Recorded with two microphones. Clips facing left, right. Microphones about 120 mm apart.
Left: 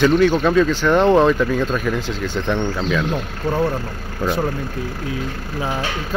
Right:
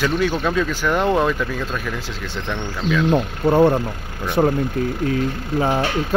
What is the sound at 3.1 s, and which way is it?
Speech, 25° right (ahead or behind).